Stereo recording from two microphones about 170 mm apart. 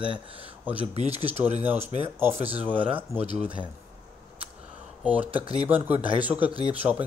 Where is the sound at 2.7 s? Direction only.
10° right (ahead or behind).